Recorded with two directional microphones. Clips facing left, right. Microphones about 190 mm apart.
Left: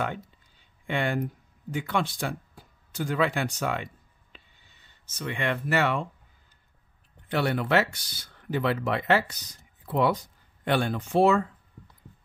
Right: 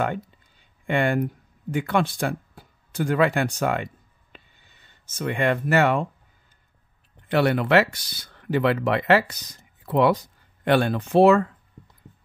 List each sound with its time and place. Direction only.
0.8 s speech: 55° right (ahead or behind)
7.2 s speech: 75° right (ahead or behind); by 10.1 s 90° right
10.6 s speech: 70° right (ahead or behind)